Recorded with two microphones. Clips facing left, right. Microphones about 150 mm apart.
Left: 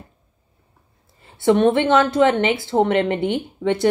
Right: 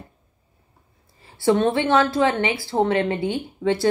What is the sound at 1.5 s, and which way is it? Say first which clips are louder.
Speech: left 3 dB; 20° left (ahead or behind).